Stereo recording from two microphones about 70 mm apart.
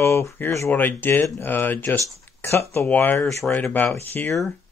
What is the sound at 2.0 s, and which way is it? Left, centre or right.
Speech, left.